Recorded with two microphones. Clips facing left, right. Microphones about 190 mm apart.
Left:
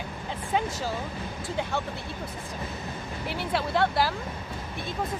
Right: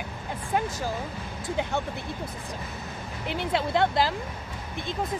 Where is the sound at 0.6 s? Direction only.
15° right (ahead or behind).